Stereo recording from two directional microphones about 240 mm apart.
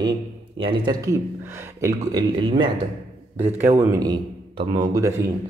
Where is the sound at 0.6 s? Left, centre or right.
Centre.